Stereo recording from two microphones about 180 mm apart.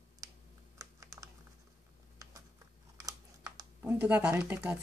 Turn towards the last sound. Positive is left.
turn(degrees=-5)  # may be behind; listen again after turning